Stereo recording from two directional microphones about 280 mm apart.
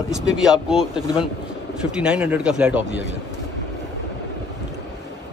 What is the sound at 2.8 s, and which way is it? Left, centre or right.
Speech, right.